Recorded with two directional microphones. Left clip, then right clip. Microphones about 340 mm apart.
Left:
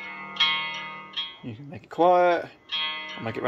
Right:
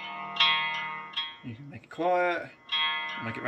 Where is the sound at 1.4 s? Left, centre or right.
Centre.